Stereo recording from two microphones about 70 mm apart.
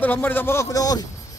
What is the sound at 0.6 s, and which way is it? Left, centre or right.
Speech, left.